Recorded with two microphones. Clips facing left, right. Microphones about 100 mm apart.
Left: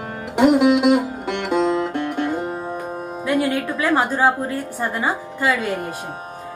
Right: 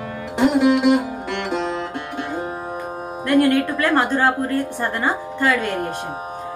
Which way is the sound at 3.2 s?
5° left (ahead or behind).